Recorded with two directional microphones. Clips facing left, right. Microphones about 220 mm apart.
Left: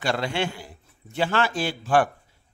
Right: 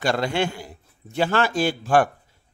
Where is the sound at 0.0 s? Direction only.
45° right (ahead or behind).